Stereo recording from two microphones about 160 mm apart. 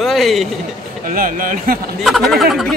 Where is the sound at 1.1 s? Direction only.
60° right (ahead or behind).